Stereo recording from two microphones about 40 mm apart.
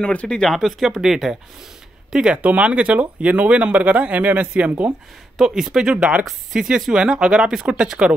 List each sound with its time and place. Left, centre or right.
0.1 s speech: left
0.6 s speech: centre
2.1 s speech: right
2.4 s speech: right
5.5 s speech: centre
5.9 s speech: right